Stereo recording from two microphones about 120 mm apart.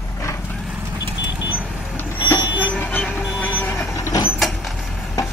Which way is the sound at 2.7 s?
15° left (ahead or behind).